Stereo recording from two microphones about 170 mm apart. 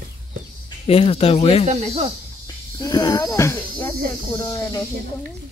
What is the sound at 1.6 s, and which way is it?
Speech, 40° right (ahead or behind).